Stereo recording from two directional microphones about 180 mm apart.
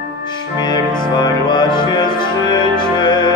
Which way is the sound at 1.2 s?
25° left (ahead or behind).